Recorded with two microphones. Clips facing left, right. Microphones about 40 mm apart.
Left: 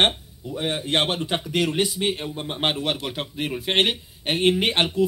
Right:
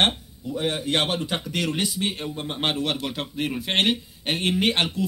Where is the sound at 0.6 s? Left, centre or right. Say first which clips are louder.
Left 1 dB; left.